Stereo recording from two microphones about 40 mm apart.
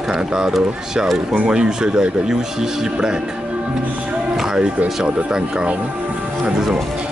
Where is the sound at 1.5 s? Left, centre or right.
Centre.